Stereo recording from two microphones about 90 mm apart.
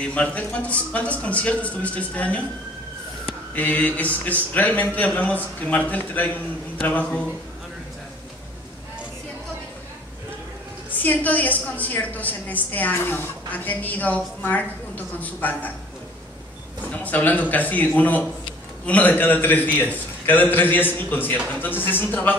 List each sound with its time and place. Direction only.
0.1 s speech: 15° left (ahead or behind)
3.5 s speech: 15° left (ahead or behind)
10.9 s a woman's voice: 20° left (ahead or behind)
16.9 s a woman's voice: 20° left (ahead or behind)